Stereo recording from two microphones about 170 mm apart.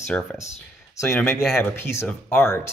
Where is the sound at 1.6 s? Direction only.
15° left (ahead or behind).